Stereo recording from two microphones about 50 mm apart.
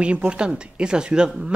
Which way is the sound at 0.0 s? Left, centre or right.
Right.